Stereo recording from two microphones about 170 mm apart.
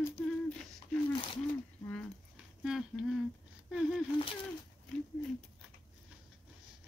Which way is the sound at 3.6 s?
Centre (ahead or behind).